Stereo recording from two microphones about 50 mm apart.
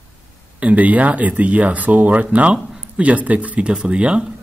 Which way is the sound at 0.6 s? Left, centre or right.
Right.